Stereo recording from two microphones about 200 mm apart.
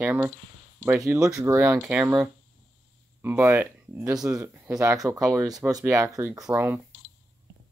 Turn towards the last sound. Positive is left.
turn(degrees=-10)  # may be behind; listen again after turning